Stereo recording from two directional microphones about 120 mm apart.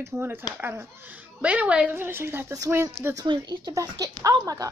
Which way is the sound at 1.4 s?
10° right (ahead or behind).